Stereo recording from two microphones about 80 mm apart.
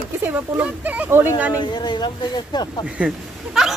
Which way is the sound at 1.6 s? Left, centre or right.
Left.